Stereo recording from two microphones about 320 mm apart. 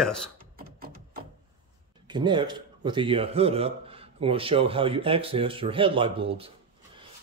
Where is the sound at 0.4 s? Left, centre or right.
Right.